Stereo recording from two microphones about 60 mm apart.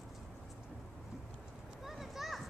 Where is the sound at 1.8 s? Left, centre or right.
Centre.